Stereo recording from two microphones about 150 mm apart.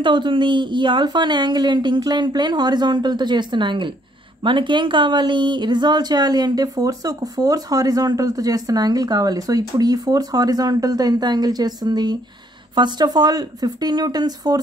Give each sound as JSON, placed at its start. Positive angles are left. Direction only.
{"t": 0.0, "sound": "speech", "side_deg": -30}